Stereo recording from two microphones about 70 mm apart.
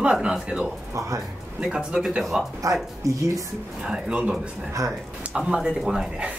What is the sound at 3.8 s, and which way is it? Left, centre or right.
Speech, centre.